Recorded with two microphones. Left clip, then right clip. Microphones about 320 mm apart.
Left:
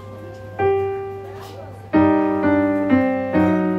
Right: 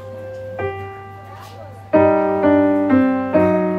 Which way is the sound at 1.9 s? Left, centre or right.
Centre.